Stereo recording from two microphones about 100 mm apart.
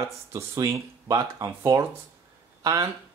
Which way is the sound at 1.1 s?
40° right (ahead or behind).